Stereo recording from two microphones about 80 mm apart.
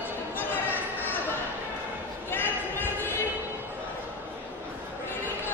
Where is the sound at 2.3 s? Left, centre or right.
Left.